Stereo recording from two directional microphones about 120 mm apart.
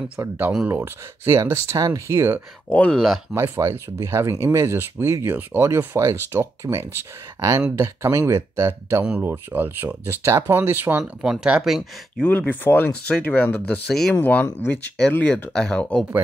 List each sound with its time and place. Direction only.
0.2 s speech: 20° right (ahead or behind)
2.7 s speech: 10° left (ahead or behind)
3.3 s speech: 25° right (ahead or behind)
11.2 s speech: 5° right (ahead or behind)
12.2 s speech: 15° left (ahead or behind)